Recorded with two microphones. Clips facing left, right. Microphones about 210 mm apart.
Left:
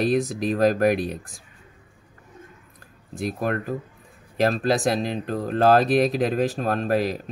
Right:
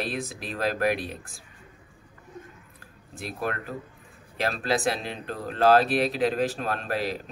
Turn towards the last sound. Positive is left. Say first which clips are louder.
# left 6 dB
turn(degrees=45)  # may be behind; listen again after turning